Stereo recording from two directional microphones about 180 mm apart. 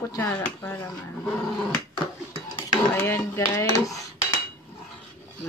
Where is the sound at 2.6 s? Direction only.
15° left (ahead or behind).